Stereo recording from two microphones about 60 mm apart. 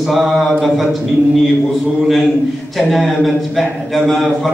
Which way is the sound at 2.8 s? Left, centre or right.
Centre.